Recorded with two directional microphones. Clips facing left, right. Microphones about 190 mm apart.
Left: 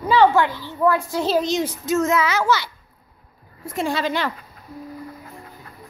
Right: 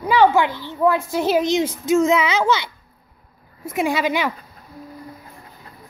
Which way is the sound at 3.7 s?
10° right (ahead or behind).